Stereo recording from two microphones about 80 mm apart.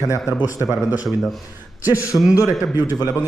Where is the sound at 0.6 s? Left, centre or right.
Right.